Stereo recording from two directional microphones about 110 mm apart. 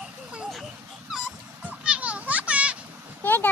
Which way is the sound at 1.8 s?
10° right (ahead or behind).